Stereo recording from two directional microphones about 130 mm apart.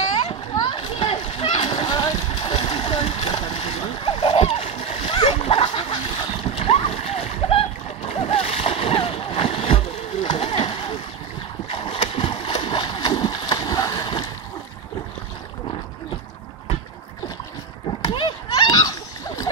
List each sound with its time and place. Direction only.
0.2 s splash: 45° left (ahead or behind)
1.7 s boat: 40° left (ahead or behind)
2.5 s a sound: 50° left (ahead or behind)
3.5 s splash: 50° left (ahead or behind)
5.4 s a sound: 45° left (ahead or behind)
6.4 s splash: 50° left (ahead or behind)
11.7 s boat: 40° left (ahead or behind)
12.3 s splash: 40° left (ahead or behind)
18.0 s splash: 40° left (ahead or behind)